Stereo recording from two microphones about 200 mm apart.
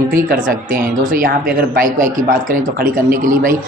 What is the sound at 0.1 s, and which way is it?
A man's voice, 45° right (ahead or behind).